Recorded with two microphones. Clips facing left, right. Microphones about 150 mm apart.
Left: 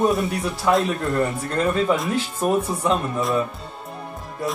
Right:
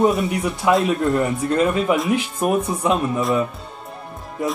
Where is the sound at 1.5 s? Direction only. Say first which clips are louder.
Right 3 dB; 15° right (ahead or behind).